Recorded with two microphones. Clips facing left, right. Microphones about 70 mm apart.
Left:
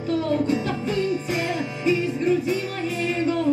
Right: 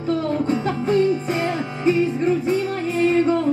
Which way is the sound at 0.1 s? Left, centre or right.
Right.